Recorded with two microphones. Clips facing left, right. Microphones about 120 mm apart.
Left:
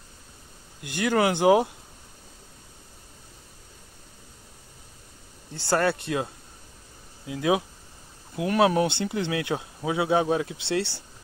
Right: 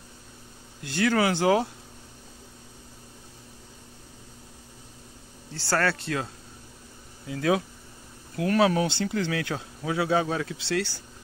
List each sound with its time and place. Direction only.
0.8 s speech: 15° left (ahead or behind)
5.5 s speech: 20° left (ahead or behind)